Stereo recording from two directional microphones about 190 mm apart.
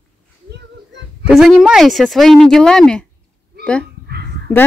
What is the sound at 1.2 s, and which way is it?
Speech, centre (ahead or behind).